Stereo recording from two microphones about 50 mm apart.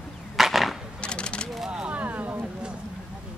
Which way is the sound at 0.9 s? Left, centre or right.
Centre.